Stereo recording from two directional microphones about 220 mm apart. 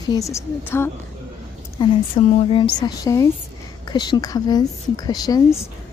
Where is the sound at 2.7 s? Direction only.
15° left (ahead or behind).